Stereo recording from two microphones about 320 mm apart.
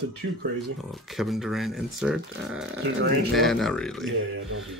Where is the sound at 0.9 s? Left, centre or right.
Centre.